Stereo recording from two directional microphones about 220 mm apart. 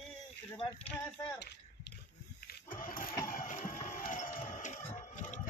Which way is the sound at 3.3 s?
35° left (ahead or behind).